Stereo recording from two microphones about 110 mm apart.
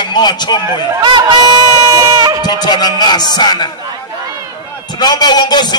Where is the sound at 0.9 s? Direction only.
40° right (ahead or behind).